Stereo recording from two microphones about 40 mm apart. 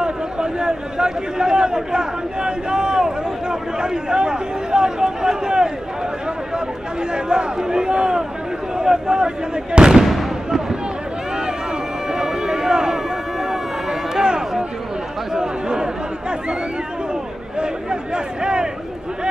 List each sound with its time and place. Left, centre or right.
0.0 s a man's voice: centre
7.2 s a man's voice: centre
9.9 s fireworks: centre
12.1 s run: centre
15.3 s speech: centre